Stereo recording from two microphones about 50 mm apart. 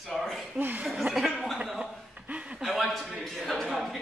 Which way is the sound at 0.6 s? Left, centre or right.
Right.